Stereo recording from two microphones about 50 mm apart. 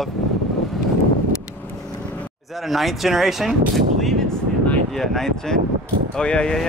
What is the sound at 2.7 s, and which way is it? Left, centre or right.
Speech, centre.